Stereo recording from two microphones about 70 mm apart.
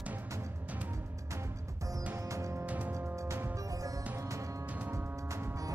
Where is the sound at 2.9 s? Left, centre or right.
Right.